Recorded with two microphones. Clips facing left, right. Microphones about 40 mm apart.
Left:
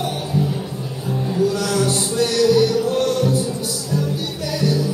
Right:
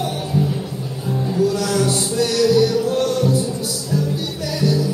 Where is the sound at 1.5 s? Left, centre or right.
Left.